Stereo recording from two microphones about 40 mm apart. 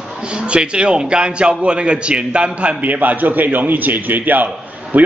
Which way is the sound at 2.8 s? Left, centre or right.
Right.